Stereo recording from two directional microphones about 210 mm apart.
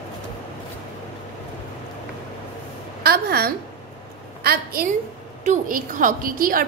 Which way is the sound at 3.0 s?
45° right (ahead or behind).